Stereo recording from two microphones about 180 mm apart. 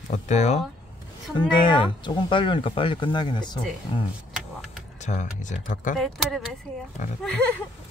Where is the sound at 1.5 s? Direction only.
25° left (ahead or behind).